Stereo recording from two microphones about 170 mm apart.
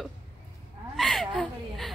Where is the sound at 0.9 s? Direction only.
Centre (ahead or behind).